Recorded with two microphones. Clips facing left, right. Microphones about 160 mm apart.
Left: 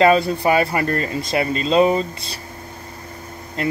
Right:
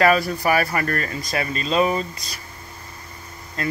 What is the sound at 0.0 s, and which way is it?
Speech, 25° left (ahead or behind).